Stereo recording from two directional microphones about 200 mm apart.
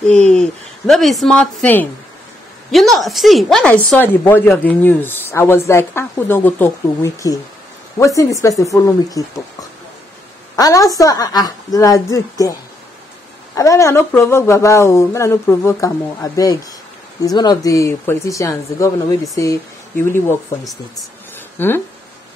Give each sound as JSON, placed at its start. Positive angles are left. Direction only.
{"t": 0.3, "sound": "a woman's voice", "side_deg": 0}
{"t": 13.6, "sound": "speech", "side_deg": 15}
{"t": 21.5, "sound": "speech", "side_deg": 10}